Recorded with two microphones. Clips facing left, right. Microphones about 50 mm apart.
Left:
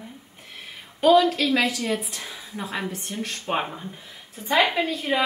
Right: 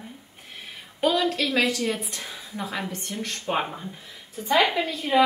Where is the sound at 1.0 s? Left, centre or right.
Centre.